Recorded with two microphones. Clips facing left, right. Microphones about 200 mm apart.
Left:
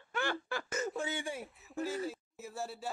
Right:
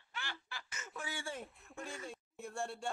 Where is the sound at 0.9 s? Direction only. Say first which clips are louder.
Left 6 dB; 20° left (ahead or behind); by 2.9 s 5° left (ahead or behind).